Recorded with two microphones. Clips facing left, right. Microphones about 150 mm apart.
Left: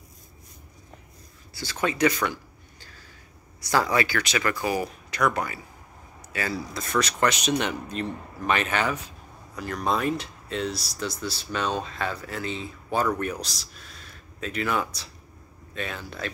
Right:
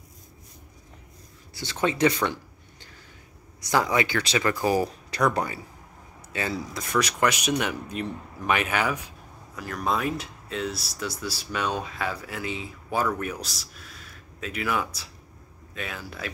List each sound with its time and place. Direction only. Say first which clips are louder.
1.5 s a man's voice: right 1 dB; 20° right (ahead or behind)